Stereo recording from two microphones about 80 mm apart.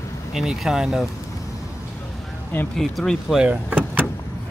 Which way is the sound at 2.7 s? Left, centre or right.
Centre.